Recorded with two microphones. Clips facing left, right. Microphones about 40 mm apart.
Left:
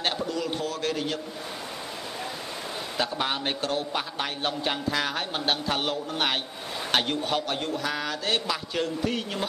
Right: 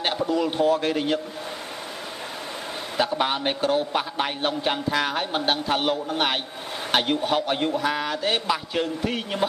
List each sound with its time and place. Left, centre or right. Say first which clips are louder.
0.0 s a man's voice: right 5 dB; centre
3.1 s a man's voice: right 4 dB; centre